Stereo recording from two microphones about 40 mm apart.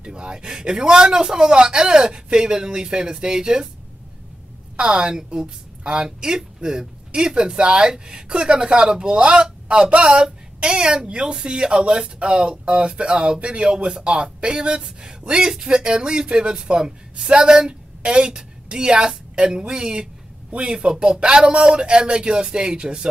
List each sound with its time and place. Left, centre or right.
0.0 s a man's voice: centre
4.7 s a woman's voice: right